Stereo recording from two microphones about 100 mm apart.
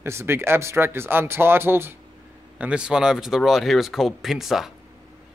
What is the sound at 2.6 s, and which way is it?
Speech, 10° right (ahead or behind).